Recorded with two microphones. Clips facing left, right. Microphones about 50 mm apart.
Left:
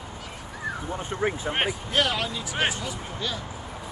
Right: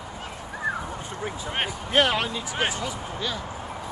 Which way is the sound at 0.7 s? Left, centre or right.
Right.